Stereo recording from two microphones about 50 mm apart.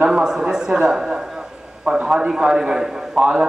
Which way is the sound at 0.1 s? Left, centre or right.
Centre.